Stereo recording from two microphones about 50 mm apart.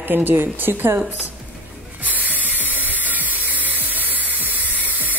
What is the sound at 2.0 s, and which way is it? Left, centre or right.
Spray, right.